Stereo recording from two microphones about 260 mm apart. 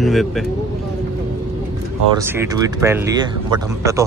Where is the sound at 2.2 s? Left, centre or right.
Centre.